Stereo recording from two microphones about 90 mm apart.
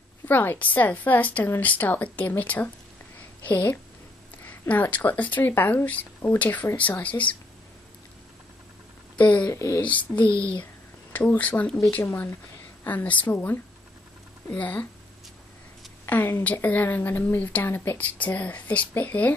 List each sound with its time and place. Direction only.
0.3 s a woman's voice: 20° left (ahead or behind)
9.2 s a child's voice: 15° left (ahead or behind)
9.5 s speech: 35° left (ahead or behind)
10.1 s a child's voice: 15° left (ahead or behind)
12.0 s a woman's voice: 30° left (ahead or behind)
16.1 s a woman's voice: 25° left (ahead or behind)